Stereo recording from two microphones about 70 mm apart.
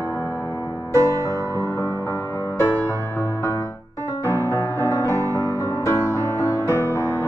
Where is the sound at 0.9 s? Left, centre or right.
Right.